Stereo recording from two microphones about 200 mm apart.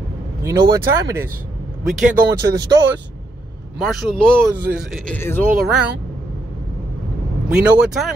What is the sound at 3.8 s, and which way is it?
Speech, centre (ahead or behind).